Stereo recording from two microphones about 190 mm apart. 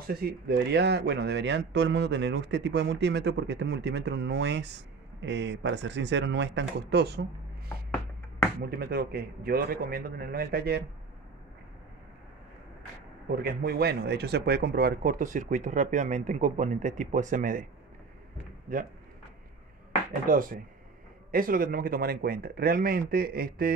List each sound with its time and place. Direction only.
0.0 s speech: 55° right (ahead or behind)
8.6 s speech: 55° right (ahead or behind)
13.3 s speech: 55° right (ahead or behind)
18.7 s speech: 45° right (ahead or behind)
20.2 s speech: 45° right (ahead or behind)